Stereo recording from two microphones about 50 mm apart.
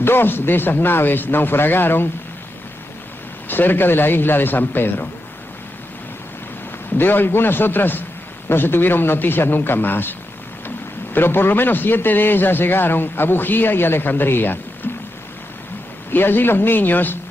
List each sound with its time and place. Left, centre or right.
0.0 s a man's voice: left
3.4 s a man's voice: left
7.0 s a man's voice: left
11.1 s a man's voice: left
16.1 s a man's voice: left